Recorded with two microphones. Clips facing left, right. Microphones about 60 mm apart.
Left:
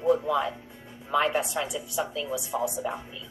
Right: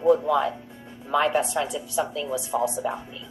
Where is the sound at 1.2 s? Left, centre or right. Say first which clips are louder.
Right 3 dB; centre.